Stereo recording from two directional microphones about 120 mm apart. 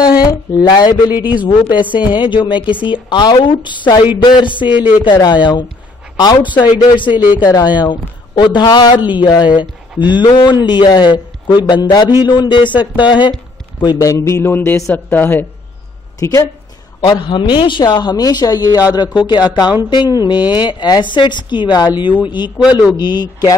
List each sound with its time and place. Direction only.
0.2 s a sound: 35° left (ahead or behind)
1.1 s speech: 15° right (ahead or behind)
1.4 s speech: 40° left (ahead or behind)
7.2 s speech: 15° right (ahead or behind)
7.4 s a man's voice: 35° left (ahead or behind); by 15.4 s 15° left (ahead or behind)
16.2 s a man's voice: 25° left (ahead or behind)
17.0 s speech: 40° left (ahead or behind)